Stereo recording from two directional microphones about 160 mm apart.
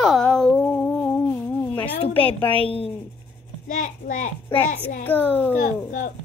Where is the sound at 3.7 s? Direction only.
55° left (ahead or behind).